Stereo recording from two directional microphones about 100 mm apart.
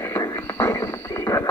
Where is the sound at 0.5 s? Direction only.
25° left (ahead or behind).